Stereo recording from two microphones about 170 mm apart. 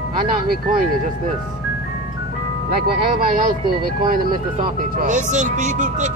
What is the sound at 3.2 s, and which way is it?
Speech, 55° right (ahead or behind).